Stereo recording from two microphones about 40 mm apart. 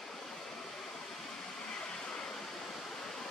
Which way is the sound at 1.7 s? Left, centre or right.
Left.